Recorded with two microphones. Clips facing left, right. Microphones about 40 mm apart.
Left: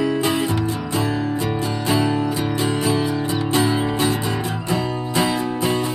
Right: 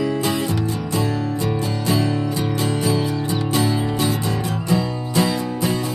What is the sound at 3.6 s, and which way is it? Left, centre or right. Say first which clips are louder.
Music: left 2 dB; centre.